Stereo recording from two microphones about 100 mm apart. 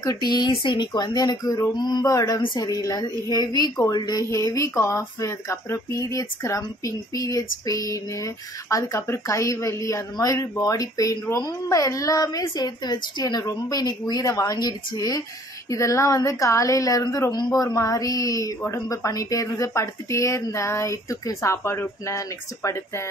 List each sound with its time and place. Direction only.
0.0 s speech: 40° left (ahead or behind)
0.5 s speech: 55° left (ahead or behind); by 23.0 s 30° left (ahead or behind)